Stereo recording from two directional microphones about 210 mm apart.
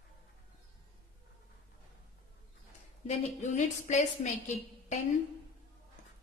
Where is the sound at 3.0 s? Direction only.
35° left (ahead or behind).